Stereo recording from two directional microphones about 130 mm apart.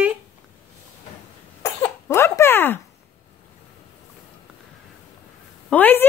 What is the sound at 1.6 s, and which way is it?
Speech, 20° left (ahead or behind).